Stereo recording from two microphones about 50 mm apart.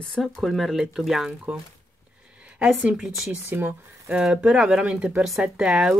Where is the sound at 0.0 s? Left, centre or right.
Centre.